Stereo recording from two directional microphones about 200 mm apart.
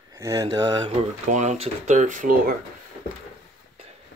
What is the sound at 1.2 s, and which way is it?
Speech, 35° right (ahead or behind).